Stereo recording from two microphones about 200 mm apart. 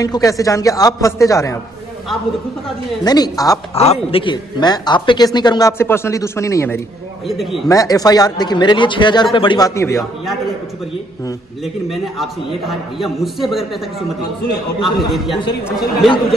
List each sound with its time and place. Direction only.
0.0 s a man's voice: 15° left (ahead or behind)
3.0 s speech: 20° left (ahead or behind)
3.7 s speech: 30° left (ahead or behind); by 6.8 s 15° left (ahead or behind)
7.2 s a man's voice: centre (ahead or behind)
7.6 s speech: 15° left (ahead or behind)
9.8 s a man's voice: 15° left (ahead or behind)
11.6 s a man's voice: centre (ahead or behind)